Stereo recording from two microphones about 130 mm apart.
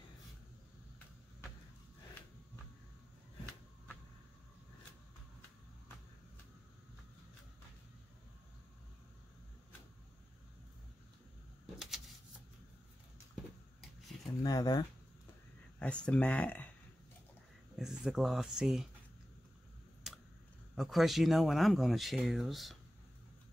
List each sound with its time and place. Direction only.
14.4 s speech: 30° left (ahead or behind)
15.8 s speech: 10° left (ahead or behind)
17.7 s speech: 5° right (ahead or behind)
20.7 s speech: centre (ahead or behind)